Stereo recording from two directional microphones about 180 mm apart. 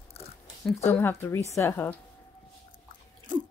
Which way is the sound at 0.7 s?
10° left (ahead or behind).